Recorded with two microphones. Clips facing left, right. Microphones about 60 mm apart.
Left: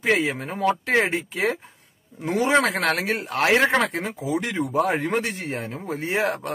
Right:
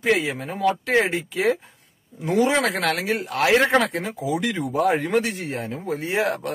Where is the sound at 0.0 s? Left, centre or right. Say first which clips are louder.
Even; left.